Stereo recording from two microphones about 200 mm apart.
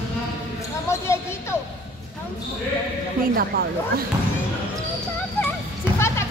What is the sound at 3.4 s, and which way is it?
Speech, 50° right (ahead or behind).